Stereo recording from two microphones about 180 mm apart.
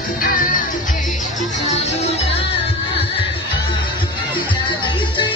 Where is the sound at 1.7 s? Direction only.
35° left (ahead or behind).